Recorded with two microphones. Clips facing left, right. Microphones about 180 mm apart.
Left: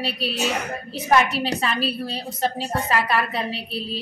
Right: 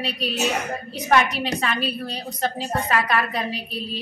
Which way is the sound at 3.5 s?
30° left (ahead or behind).